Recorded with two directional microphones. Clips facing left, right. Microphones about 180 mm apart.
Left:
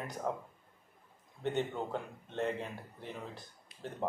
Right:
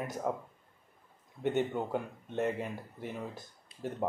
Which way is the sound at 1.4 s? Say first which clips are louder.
Right 4 dB; 10° right (ahead or behind).